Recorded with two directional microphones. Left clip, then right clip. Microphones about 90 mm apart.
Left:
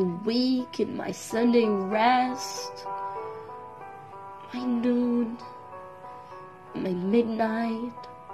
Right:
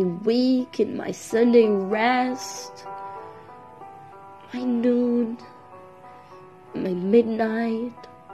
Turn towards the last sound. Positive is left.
turn(degrees=-25)  # may be behind; listen again after turning